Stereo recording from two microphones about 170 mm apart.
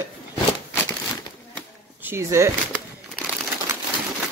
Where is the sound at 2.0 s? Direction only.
15° right (ahead or behind).